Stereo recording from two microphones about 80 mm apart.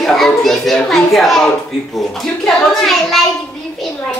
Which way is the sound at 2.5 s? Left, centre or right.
Centre.